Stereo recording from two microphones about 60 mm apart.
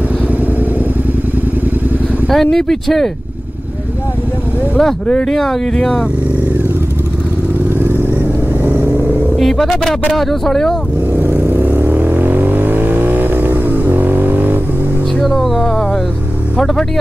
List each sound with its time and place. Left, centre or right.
2.3 s speech: centre
4.7 s speech: centre
7.8 s vehicle: right
9.4 s speech: centre
11.1 s vehicle: right
15.2 s music: centre
16.5 s speech: centre